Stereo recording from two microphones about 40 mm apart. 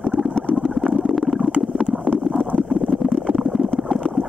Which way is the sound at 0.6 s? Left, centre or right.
Centre.